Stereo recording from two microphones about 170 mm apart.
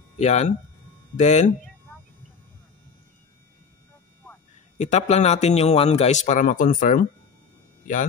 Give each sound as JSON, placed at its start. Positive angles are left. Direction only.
{"t": 0.2, "sound": "a man's voice", "side_deg": 40}
{"t": 4.7, "sound": "a man's voice", "side_deg": 45}